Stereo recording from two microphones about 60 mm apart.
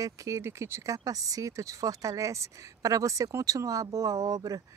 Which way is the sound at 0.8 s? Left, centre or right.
Right.